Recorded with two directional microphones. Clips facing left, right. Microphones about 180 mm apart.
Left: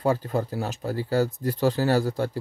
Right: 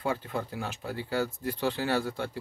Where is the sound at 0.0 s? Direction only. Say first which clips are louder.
Left 7 dB; 40° left (ahead or behind).